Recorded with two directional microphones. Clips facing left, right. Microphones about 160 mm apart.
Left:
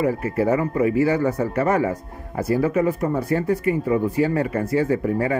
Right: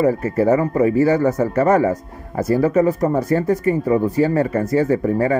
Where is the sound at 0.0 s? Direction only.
40° right (ahead or behind).